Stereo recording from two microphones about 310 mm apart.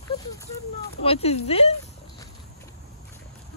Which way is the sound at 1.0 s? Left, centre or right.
Centre.